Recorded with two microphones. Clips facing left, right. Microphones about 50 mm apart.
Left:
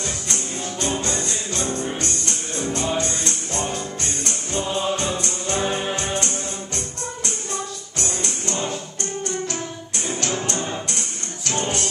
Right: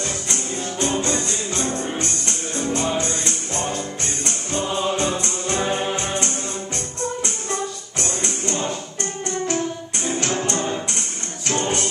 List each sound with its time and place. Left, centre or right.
0.9 s music: centre
6.1 s music: centre
10.2 s music: centre